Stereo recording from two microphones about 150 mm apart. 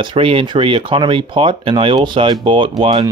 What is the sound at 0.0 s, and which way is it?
Speech, 35° right (ahead or behind).